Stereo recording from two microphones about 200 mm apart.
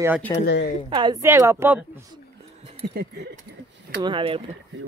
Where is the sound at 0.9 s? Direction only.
25° right (ahead or behind).